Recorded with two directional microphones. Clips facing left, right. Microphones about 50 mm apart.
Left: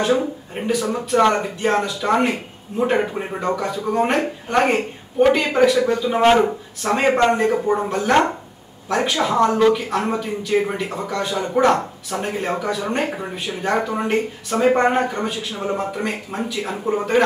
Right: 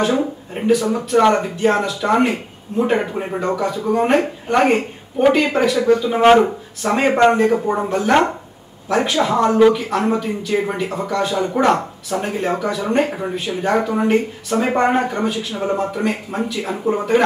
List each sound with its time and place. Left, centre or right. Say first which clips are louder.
0.1 s speech: even; centre
7.3 s speech: right 3 dB; centre
7.6 s speech: right 1 dB; centre
9.8 s speech: right 3 dB; centre